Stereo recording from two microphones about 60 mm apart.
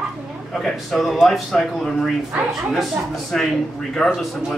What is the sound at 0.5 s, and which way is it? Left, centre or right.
Speech, centre.